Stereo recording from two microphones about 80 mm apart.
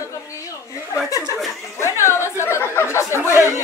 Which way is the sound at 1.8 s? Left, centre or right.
Left.